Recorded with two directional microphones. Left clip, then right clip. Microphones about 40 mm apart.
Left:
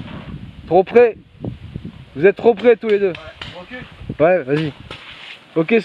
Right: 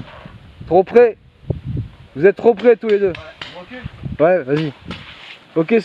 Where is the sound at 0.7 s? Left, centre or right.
Right.